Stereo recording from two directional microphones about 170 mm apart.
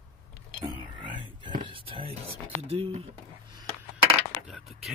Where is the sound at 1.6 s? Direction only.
30° right (ahead or behind).